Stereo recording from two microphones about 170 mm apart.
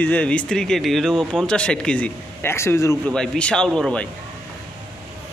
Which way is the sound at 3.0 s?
5° left (ahead or behind).